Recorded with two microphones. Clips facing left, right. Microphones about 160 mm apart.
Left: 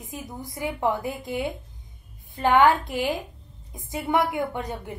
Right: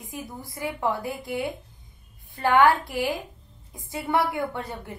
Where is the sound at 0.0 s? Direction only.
20° left (ahead or behind).